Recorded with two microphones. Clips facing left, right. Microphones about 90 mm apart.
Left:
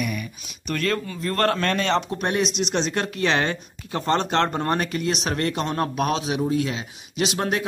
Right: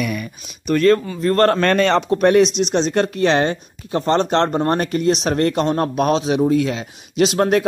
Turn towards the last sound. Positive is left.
turn(degrees=-40)  # may be behind; listen again after turning